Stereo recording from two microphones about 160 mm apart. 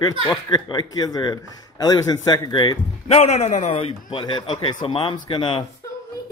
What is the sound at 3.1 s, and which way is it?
A man's voice, 40° left (ahead or behind).